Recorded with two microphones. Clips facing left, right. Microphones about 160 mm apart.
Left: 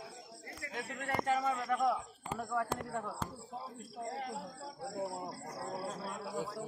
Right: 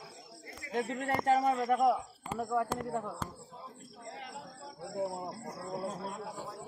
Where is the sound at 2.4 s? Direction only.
15° right (ahead or behind).